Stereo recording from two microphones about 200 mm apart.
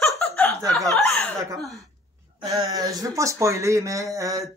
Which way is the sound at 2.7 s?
20° right (ahead or behind).